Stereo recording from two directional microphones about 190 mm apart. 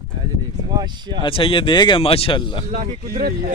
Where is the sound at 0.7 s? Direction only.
20° right (ahead or behind).